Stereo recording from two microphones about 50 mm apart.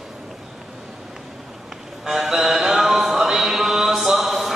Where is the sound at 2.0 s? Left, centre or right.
Centre.